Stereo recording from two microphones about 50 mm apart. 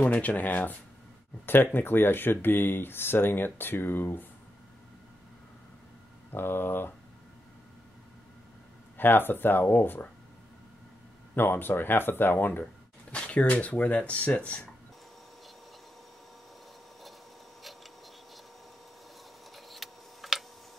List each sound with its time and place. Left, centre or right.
0.0 s speech: left
1.4 s speech: left
6.3 s speech: left
8.9 s speech: left
11.3 s speech: left
13.1 s speech: left
19.5 s a sound: centre